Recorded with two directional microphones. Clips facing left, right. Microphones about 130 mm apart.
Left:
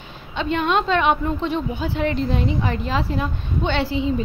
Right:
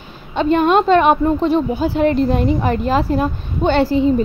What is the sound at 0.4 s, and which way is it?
A woman's voice, 45° right (ahead or behind).